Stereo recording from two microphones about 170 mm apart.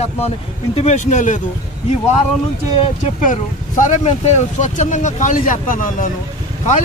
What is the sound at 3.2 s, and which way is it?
Speech, 50° left (ahead or behind).